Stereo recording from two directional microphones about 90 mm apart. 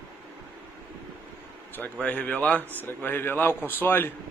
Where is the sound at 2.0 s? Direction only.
15° left (ahead or behind).